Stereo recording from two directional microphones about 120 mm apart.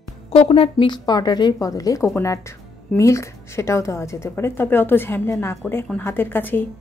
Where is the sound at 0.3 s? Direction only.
55° left (ahead or behind).